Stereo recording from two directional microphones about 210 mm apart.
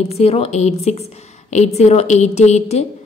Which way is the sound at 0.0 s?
30° left (ahead or behind).